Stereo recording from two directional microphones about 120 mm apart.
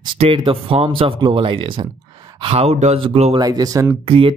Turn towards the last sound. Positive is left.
turn(degrees=-50)  # may be behind; listen again after turning